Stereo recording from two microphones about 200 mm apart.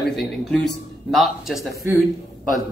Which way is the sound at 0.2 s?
5° left (ahead or behind).